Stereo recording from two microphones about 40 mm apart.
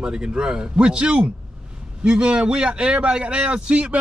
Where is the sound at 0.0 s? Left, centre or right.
Centre.